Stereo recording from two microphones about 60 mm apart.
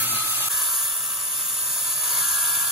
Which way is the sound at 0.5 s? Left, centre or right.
Centre.